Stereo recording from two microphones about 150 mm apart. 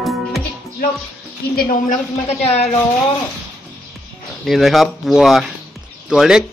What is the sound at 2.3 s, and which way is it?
Speech, 45° left (ahead or behind).